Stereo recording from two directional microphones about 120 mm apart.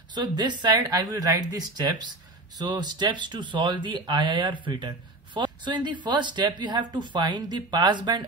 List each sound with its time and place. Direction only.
0.1 s speech: 40° right (ahead or behind)
2.6 s speech: 40° right (ahead or behind)